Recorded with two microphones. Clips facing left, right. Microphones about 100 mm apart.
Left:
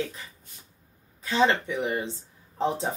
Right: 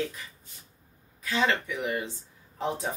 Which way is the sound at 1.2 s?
30° left (ahead or behind).